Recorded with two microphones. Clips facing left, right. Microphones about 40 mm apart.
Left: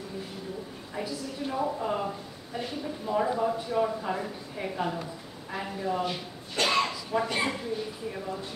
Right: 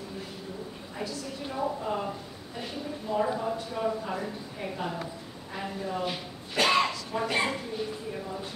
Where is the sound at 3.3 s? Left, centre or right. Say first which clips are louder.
Left 4 dB; centre.